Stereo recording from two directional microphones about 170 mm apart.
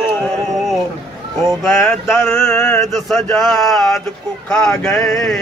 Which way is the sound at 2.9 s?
Centre (ahead or behind).